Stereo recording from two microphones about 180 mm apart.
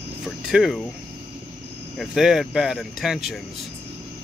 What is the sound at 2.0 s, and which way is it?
Speech, centre (ahead or behind).